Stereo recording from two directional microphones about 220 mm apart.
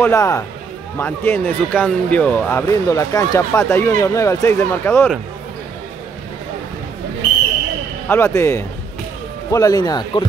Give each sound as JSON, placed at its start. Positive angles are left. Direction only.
{"t": 0.0, "sound": "speech", "side_deg": 15}
{"t": 8.1, "sound": "speech", "side_deg": 10}